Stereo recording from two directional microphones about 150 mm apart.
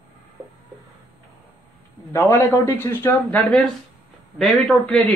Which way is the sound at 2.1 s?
15° left (ahead or behind).